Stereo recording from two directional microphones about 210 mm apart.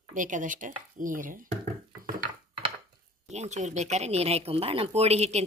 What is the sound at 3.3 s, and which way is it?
Speech, 35° right (ahead or behind).